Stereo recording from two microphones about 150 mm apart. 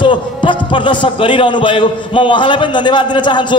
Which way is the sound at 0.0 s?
35° left (ahead or behind).